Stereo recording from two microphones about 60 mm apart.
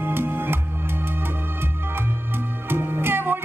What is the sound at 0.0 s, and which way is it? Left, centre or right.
Music, right.